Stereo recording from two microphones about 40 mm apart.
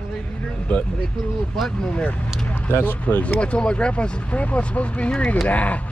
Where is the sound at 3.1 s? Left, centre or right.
Left.